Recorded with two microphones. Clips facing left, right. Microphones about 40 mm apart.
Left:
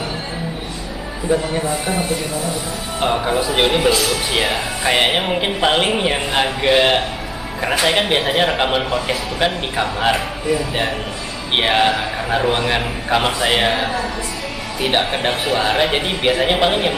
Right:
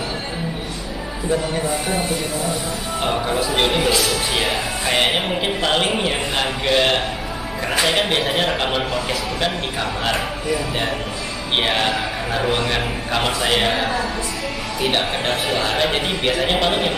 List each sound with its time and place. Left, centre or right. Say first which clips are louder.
1.3 s speech: left 2 dB; centre
7.7 s speech: left 2 dB; centre
8.1 s speech: left 3 dB; centre
10.1 s speech: left 2 dB; centre
14.9 s speech: left 3 dB; centre